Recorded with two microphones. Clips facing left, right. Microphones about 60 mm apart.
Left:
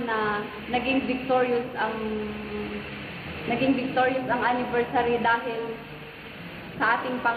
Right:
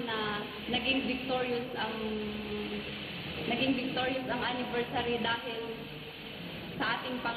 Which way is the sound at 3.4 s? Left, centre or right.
Left.